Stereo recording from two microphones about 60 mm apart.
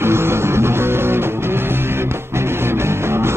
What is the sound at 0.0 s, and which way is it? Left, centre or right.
Music, right.